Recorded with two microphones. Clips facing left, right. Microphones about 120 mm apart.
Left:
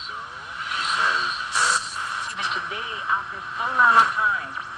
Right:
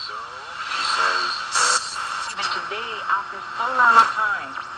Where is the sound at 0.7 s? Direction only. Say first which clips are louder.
Right 2 dB; 75° right (ahead or behind).